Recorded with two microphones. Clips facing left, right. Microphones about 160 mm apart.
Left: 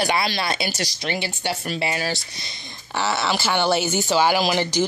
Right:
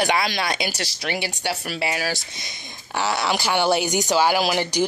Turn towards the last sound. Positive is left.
turn(degrees=-10)  # may be behind; listen again after turning